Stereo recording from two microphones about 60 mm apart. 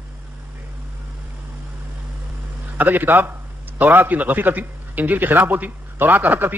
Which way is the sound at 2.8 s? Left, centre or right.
Right.